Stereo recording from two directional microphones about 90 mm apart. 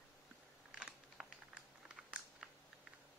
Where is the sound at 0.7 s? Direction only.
5° right (ahead or behind).